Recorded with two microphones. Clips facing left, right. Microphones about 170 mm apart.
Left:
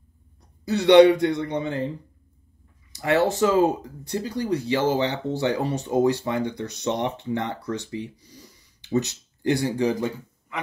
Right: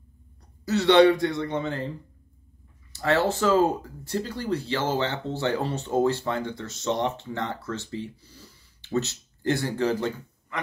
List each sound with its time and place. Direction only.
0.7 s speech: 15° left (ahead or behind)
2.9 s speech: 15° left (ahead or behind)